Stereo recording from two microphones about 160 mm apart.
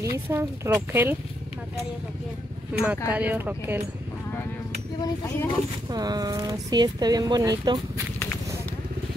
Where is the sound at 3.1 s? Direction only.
10° right (ahead or behind).